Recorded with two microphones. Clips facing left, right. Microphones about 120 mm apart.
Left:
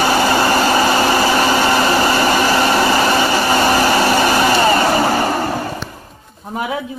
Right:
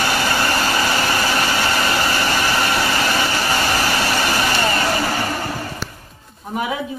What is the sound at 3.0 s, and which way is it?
Vacuum cleaner, 45° left (ahead or behind).